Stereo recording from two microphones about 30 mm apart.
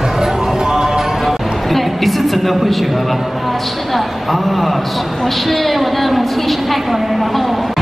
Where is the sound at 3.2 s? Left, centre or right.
Centre.